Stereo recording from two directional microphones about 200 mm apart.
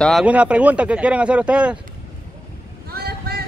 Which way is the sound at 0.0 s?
Centre (ahead or behind).